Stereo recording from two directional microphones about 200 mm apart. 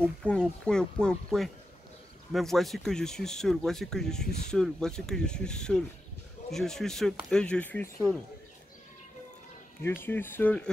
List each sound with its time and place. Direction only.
0.2 s speech: 5° left (ahead or behind)
10.0 s speech: 10° left (ahead or behind)